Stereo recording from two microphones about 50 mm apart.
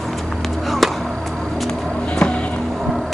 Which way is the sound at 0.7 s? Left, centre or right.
Centre.